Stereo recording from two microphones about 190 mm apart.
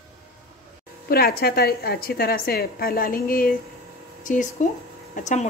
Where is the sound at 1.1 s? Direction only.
55° left (ahead or behind).